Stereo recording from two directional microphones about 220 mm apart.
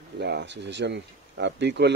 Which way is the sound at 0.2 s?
50° right (ahead or behind).